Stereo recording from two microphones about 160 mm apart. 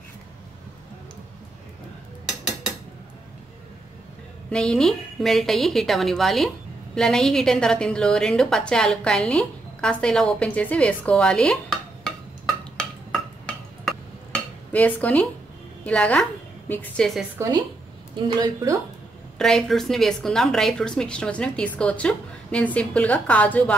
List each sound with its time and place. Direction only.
4.5 s a woman's voice: 5° left (ahead or behind)
12.7 s stir: 5° left (ahead or behind)
14.7 s a woman's voice: 10° left (ahead or behind)
18.1 s a woman's voice: 30° right (ahead or behind)
19.3 s a woman's voice: 5° left (ahead or behind)